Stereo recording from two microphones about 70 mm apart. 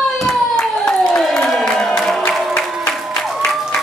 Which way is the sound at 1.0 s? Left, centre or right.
Centre.